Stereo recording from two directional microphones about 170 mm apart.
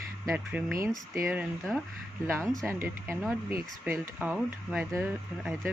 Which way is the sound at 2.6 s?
15° right (ahead or behind).